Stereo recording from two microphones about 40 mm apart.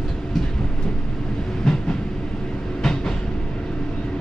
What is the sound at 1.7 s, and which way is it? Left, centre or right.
Train, centre.